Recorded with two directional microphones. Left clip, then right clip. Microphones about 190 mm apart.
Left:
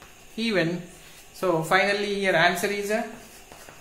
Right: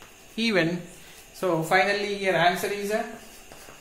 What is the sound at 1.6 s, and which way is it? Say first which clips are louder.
Speech: right 1 dB; 20° left (ahead or behind).